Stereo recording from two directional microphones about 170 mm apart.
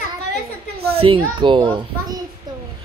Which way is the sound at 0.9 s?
30° right (ahead or behind).